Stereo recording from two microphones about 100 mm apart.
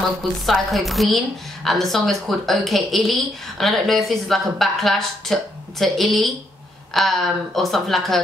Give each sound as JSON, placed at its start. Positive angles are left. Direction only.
{"t": 0.2, "sound": "a woman's voice", "side_deg": 0}